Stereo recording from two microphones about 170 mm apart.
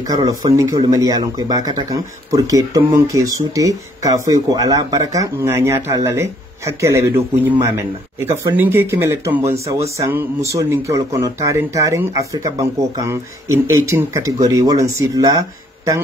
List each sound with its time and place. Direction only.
0.1 s speech: 20° right (ahead or behind)